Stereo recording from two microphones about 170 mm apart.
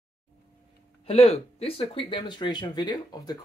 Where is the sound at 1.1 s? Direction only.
40° left (ahead or behind).